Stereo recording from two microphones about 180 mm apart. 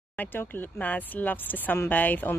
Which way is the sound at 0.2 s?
10° left (ahead or behind).